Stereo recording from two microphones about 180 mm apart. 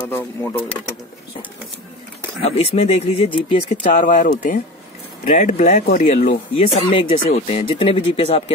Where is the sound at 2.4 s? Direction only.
35° left (ahead or behind).